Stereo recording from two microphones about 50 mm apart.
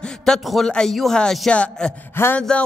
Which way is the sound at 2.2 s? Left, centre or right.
Left.